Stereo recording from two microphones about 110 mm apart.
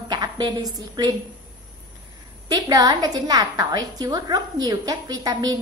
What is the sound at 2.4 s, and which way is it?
A woman's voice, 35° right (ahead or behind).